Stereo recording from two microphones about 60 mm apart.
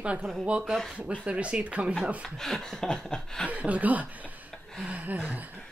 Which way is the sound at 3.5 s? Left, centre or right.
Right.